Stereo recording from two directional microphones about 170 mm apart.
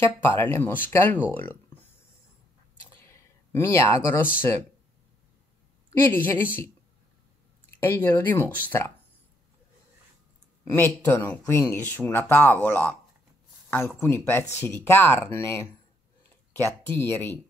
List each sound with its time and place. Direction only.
0.4 s speech: 10° left (ahead or behind)
3.0 s a sound: 15° left (ahead or behind)
5.9 s speech: 10° left (ahead or behind)
7.7 s speech: 15° left (ahead or behind)
10.6 s speech: 15° left (ahead or behind)